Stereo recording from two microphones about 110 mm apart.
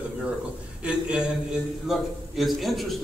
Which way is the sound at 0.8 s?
10° right (ahead or behind).